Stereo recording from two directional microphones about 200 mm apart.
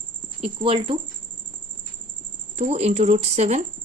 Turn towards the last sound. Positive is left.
turn(degrees=-35)  # may be behind; listen again after turning